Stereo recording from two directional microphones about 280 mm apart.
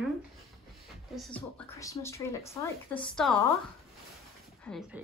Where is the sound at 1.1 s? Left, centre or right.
Centre.